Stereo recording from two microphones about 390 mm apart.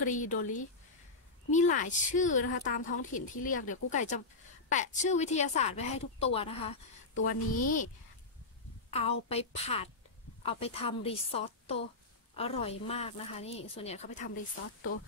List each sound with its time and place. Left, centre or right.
0.0 s a woman's voice: centre
8.9 s a woman's voice: centre